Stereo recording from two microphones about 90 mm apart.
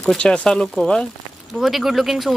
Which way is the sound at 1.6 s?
5° right (ahead or behind).